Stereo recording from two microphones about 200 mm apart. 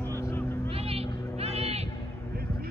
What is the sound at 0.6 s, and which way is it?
Vehicle, 30° right (ahead or behind).